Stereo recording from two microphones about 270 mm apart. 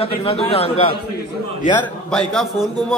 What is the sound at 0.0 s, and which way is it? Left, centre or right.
Speech, left.